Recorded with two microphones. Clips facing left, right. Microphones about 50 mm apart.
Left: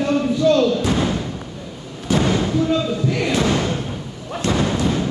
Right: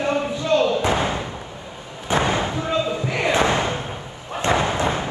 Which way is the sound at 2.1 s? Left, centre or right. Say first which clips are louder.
Left 2 dB; right.